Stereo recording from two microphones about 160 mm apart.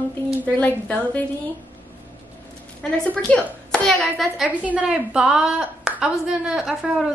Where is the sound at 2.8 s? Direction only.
5° left (ahead or behind).